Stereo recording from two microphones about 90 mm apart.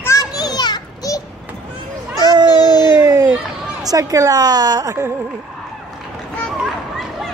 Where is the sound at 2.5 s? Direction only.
50° left (ahead or behind).